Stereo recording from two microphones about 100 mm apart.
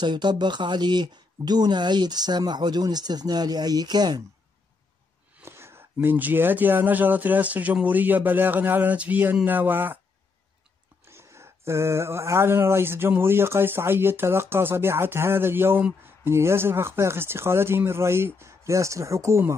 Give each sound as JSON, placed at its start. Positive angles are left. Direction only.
{"t": 0.0, "sound": "speech", "side_deg": -50}
{"t": 5.4, "sound": "speech", "side_deg": -25}
{"t": 11.1, "sound": "speech", "side_deg": -25}